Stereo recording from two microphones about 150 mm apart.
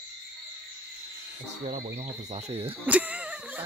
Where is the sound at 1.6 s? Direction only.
50° right (ahead or behind).